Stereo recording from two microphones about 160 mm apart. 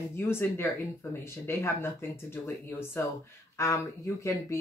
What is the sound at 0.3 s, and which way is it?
Speech, 15° left (ahead or behind).